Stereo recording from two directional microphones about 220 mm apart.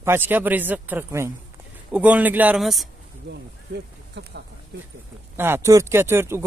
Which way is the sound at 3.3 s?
50° right (ahead or behind).